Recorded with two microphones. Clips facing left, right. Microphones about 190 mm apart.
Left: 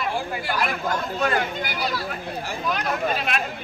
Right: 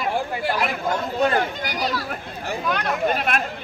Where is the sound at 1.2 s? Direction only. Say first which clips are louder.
Right 4 dB; 30° right (ahead or behind).